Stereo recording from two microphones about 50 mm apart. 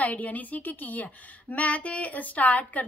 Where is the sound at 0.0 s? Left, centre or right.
Left.